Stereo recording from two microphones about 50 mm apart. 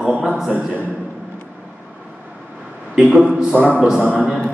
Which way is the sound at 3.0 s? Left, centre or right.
Centre.